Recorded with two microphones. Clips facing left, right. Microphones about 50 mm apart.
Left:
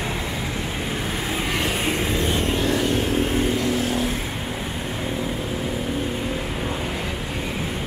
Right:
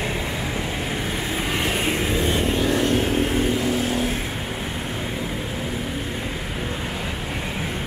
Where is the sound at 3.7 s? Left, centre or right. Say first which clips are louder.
Even; right.